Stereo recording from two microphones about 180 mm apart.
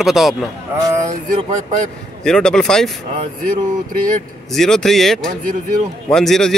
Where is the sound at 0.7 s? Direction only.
20° right (ahead or behind).